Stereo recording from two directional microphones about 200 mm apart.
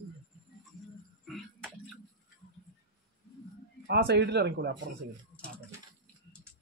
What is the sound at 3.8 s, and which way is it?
Speech, 55° right (ahead or behind).